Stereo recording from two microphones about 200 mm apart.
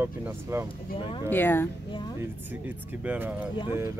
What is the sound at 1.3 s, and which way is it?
Speech, 10° left (ahead or behind).